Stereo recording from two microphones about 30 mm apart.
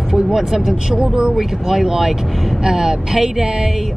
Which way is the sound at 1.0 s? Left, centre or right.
Right.